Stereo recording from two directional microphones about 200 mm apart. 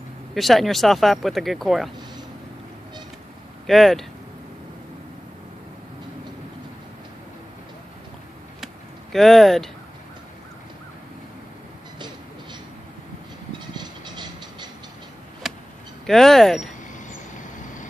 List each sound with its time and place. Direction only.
0.3 s speech: centre (ahead or behind)
3.6 s speech: centre (ahead or behind)
9.1 s speech: centre (ahead or behind)
13.7 s vehicle: 20° right (ahead or behind)
15.4 s vehicle: centre (ahead or behind)
16.1 s speech: centre (ahead or behind)